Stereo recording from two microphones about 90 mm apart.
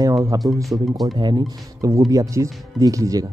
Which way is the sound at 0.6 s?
Centre (ahead or behind).